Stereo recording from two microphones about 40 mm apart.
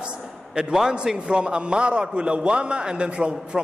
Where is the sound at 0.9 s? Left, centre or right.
Centre.